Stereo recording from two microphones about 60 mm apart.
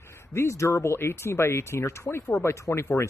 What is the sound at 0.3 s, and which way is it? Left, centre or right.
Speech, left.